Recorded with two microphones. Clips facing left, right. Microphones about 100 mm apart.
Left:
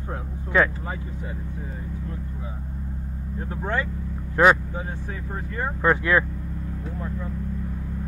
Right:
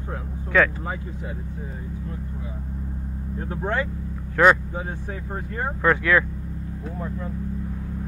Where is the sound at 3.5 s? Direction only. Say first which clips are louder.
Right 1 dB; 25° right (ahead or behind).